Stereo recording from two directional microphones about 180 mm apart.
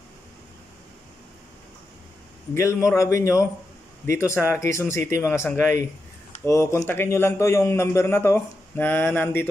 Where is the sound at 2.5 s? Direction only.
15° left (ahead or behind).